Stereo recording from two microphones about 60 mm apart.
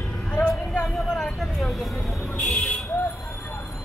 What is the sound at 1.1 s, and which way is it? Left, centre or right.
Vehicle, centre.